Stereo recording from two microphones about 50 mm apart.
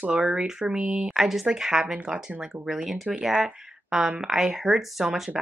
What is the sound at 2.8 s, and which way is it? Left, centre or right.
Speech, centre.